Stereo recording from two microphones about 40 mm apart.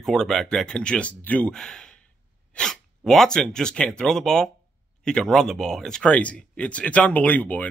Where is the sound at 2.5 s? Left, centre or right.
Centre.